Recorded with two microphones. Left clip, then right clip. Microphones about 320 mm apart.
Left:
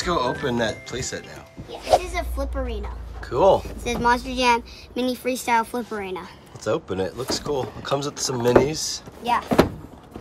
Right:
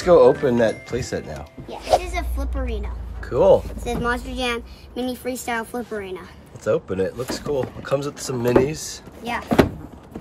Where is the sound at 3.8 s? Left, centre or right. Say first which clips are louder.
Left 3 dB; left.